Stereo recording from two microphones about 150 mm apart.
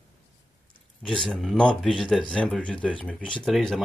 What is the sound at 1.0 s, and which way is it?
Speech, 5° left (ahead or behind).